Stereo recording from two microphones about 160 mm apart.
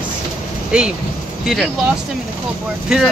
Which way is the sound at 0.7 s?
5° right (ahead or behind).